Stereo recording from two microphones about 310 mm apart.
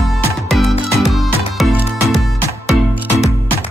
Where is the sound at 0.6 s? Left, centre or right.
Centre.